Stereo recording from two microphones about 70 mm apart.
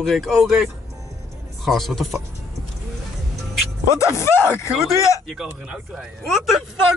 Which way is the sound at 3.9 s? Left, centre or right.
Left.